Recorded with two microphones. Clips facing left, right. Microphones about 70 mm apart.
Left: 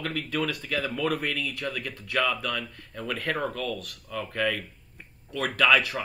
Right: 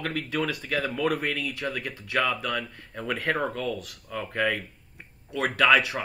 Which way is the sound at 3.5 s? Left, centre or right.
Centre.